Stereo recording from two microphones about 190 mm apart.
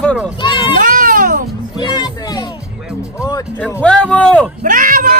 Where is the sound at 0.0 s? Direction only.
5° left (ahead or behind).